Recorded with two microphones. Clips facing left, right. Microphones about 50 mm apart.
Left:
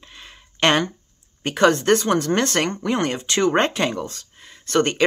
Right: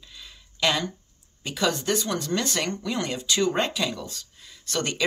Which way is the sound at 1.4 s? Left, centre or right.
Left.